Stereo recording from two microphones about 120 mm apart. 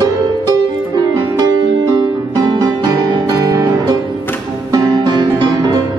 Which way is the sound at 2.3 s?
30° right (ahead or behind).